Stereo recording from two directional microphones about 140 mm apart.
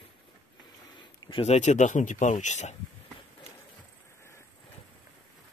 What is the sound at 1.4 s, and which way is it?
Speech, 55° left (ahead or behind).